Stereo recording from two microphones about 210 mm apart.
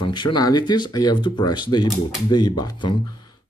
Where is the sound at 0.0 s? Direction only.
20° left (ahead or behind).